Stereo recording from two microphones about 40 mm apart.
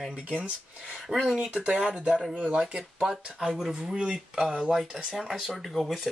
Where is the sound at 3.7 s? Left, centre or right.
Right.